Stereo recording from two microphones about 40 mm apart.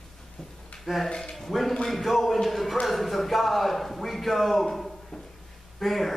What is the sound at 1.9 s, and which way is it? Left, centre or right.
A man's voice, centre.